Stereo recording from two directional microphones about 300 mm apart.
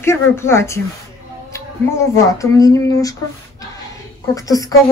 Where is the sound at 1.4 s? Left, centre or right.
Centre.